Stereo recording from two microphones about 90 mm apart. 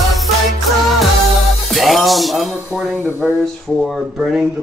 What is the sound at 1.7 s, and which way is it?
Music, centre (ahead or behind).